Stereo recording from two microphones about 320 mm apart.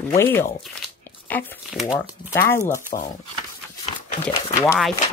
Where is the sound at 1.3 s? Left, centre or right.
Centre.